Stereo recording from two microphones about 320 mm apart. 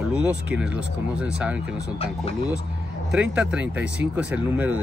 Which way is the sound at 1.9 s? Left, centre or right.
Centre.